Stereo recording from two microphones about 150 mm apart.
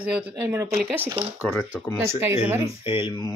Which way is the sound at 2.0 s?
15° right (ahead or behind).